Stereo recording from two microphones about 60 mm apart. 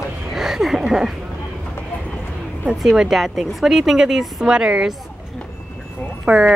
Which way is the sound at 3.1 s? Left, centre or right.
Centre.